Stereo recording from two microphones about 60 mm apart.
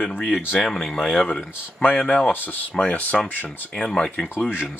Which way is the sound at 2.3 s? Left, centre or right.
Left.